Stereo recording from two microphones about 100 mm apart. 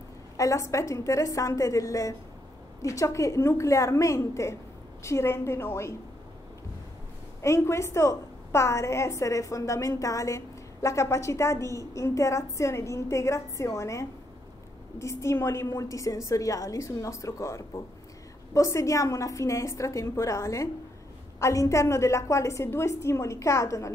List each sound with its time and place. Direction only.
0.4 s a woman's voice: 30° left (ahead or behind)
7.4 s a woman's voice: 30° left (ahead or behind)